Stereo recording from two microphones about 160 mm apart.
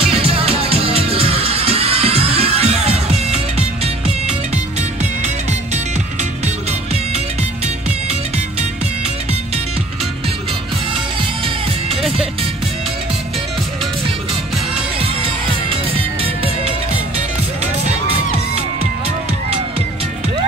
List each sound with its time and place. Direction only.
0.0 s music: 35° right (ahead or behind)